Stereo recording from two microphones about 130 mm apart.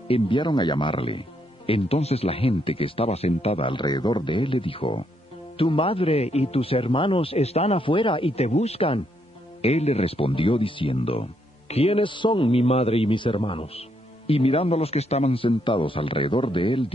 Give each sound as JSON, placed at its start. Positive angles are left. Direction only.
{"t": 0.1, "sound": "speech", "side_deg": 40}